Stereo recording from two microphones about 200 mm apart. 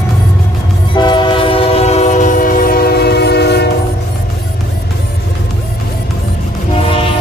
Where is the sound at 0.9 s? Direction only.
25° left (ahead or behind); by 3.7 s 55° left (ahead or behind).